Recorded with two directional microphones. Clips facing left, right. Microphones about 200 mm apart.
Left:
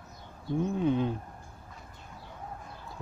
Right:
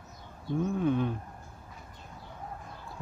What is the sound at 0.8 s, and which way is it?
Speech, 25° left (ahead or behind).